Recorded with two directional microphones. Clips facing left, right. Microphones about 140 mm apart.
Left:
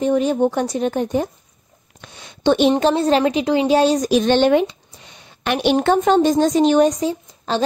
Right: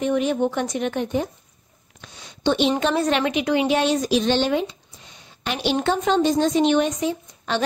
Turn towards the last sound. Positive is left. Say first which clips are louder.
# left 3 dB
turn(degrees=35)  # may be behind; listen again after turning